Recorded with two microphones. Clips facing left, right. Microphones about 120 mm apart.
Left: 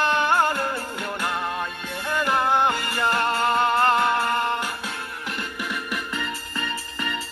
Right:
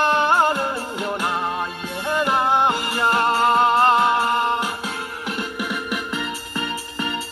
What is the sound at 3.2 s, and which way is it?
Music, 35° right (ahead or behind).